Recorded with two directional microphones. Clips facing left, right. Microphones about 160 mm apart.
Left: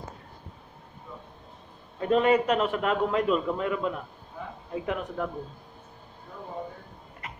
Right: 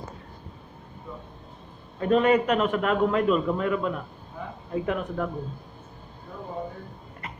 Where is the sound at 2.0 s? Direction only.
20° left (ahead or behind).